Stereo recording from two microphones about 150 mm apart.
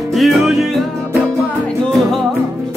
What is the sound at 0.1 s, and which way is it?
Music, centre (ahead or behind).